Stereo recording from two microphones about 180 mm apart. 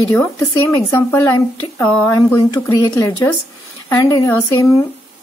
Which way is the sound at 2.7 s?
20° left (ahead or behind).